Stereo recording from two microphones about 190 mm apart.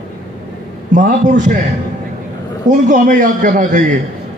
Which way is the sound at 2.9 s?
40° right (ahead or behind).